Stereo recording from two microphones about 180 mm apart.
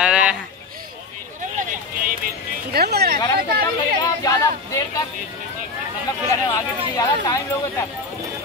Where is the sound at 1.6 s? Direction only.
50° right (ahead or behind).